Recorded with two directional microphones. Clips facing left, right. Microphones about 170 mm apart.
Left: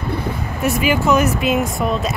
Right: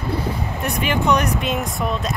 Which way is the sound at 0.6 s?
5° left (ahead or behind).